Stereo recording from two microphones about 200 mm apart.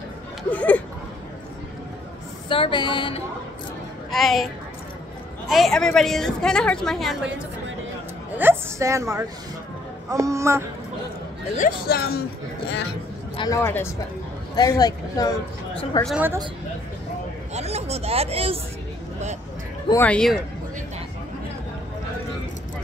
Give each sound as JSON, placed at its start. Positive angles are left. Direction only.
{"t": 0.4, "sound": "speech", "side_deg": 5}
{"t": 2.5, "sound": "speech", "side_deg": 25}
{"t": 4.1, "sound": "a woman's voice", "side_deg": 0}
{"t": 5.5, "sound": "a woman's voice", "side_deg": 0}
{"t": 8.4, "sound": "a sound", "side_deg": -10}
{"t": 10.1, "sound": "speech", "side_deg": -15}
{"t": 11.5, "sound": "speech", "side_deg": 45}
{"t": 13.4, "sound": "speech", "side_deg": 15}
{"t": 16.0, "sound": "a woman's voice", "side_deg": 0}
{"t": 17.6, "sound": "speech", "side_deg": -30}
{"t": 19.9, "sound": "a woman's voice", "side_deg": 10}